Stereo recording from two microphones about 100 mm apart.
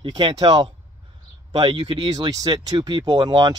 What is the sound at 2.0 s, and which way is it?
Speech, 40° right (ahead or behind).